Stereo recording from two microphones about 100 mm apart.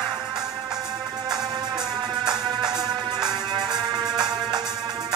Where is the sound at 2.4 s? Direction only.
45° right (ahead or behind).